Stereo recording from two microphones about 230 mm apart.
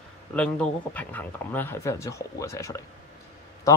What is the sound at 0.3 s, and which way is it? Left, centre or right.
A man's voice, centre.